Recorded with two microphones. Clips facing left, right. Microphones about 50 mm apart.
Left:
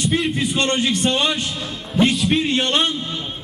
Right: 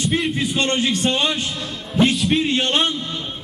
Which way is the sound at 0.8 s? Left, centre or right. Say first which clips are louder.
Even; right.